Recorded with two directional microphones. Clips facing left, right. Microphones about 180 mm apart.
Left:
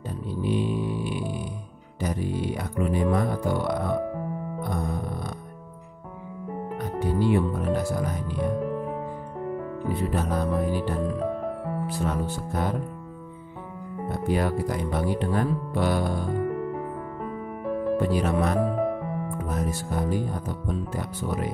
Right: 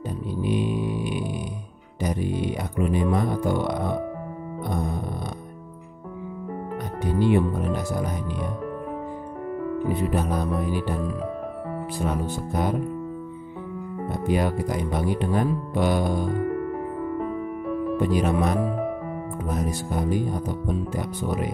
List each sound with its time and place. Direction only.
0.4 s a sound: 15° right (ahead or behind)
2.0 s speech: 20° right (ahead or behind)
4.6 s music: 20° right (ahead or behind)
7.1 s speech: 20° right (ahead or behind)
9.8 s speech: 15° right (ahead or behind)
14.0 s speech: 15° right (ahead or behind)
17.9 s speech: 15° right (ahead or behind)